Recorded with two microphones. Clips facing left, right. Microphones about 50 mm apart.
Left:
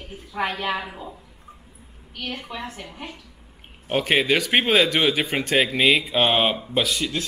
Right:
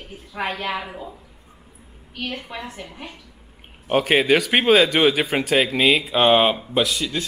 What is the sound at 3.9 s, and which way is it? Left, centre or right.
A man's voice, centre.